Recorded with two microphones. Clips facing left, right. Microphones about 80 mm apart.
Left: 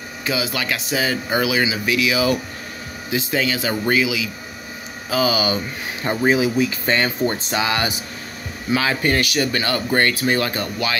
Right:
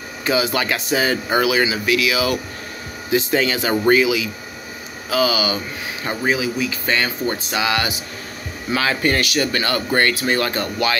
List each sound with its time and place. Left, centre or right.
0.3 s speech: centre
1.4 s speech: centre
3.1 s speech: centre
5.1 s speech: left
6.2 s speech: left
7.5 s speech: left
8.7 s speech: centre